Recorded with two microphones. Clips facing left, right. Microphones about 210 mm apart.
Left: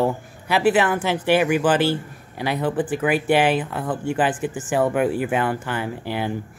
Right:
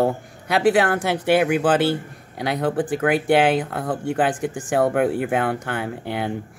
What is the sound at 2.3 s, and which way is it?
Speech, 70° right (ahead or behind).